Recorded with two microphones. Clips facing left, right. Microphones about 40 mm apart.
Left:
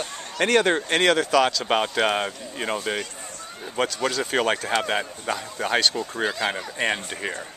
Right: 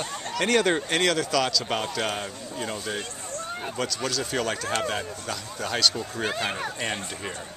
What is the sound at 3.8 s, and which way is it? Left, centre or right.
Speech, left.